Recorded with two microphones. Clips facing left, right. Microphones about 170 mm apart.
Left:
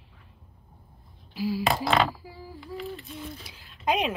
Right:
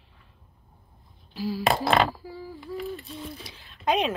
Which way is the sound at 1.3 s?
10° left (ahead or behind).